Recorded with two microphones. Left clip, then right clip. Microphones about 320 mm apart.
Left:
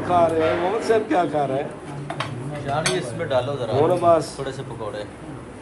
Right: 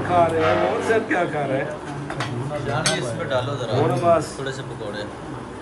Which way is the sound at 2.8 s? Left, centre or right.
Left.